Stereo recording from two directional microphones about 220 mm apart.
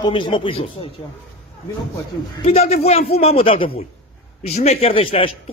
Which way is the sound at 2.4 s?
30° left (ahead or behind).